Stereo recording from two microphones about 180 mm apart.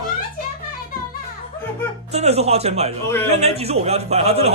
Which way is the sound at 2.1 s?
35° right (ahead or behind).